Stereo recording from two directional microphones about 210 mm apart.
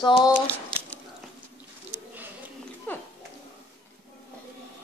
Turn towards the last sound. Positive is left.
turn(degrees=10)  # may be behind; listen again after turning